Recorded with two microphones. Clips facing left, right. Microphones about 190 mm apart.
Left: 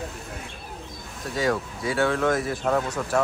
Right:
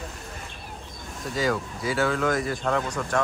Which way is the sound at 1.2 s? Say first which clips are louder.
Left 1 dB; centre (ahead or behind).